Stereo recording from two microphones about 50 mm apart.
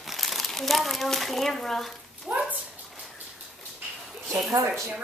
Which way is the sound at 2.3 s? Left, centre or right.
Right.